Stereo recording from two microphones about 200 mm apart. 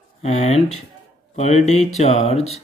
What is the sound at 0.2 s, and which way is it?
Speech, 35° left (ahead or behind).